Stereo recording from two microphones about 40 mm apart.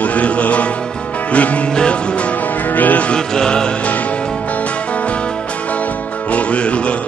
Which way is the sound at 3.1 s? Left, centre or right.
Left.